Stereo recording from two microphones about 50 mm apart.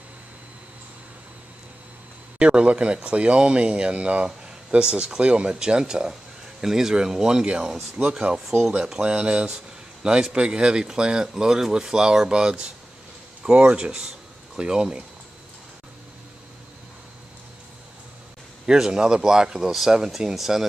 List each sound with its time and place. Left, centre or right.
2.3 s speech: centre
18.7 s speech: centre